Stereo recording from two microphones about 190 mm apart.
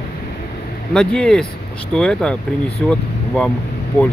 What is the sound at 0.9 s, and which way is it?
Speech, 5° left (ahead or behind).